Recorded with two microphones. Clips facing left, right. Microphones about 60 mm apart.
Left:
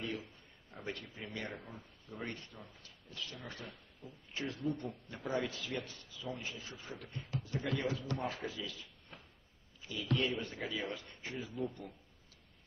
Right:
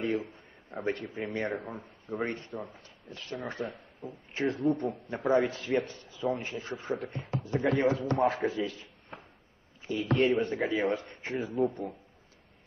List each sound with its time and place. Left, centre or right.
0.0 s a man's voice: right
3.6 s a sound: right
4.3 s a man's voice: right
6.5 s speech: right
7.0 s a man's voice: right